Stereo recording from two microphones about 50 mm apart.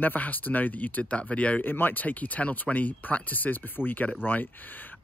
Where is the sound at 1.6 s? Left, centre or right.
Left.